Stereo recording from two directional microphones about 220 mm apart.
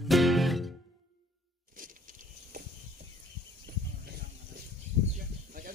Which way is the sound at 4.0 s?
45° right (ahead or behind).